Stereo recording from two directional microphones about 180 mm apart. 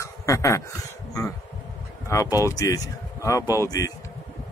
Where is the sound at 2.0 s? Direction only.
20° left (ahead or behind).